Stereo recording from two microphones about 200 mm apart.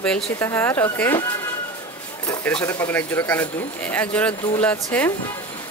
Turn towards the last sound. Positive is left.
turn(degrees=5)  # may be behind; listen again after turning